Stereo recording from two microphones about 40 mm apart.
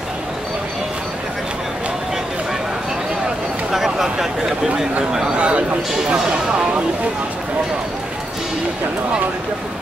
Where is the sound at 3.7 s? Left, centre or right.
Centre.